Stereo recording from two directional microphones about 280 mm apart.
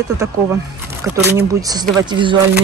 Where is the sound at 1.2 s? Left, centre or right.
Centre.